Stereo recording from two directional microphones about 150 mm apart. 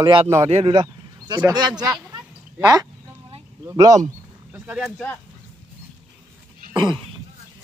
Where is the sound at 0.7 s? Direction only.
30° right (ahead or behind).